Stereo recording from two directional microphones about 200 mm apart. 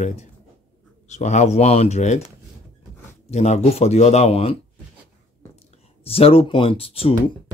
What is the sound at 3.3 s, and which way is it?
Speech, 35° left (ahead or behind).